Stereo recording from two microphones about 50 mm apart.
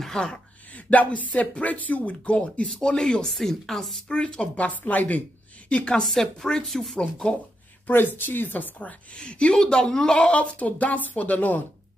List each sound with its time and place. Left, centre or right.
0.0 s a woman's voice: centre
0.7 s a woman's voice: left; by 4.0 s centre
4.1 s a woman's voice: centre
5.7 s a woman's voice: centre
6.0 s speech: centre
7.8 s a woman's voice: left; by 10.3 s centre
10.3 s speech: left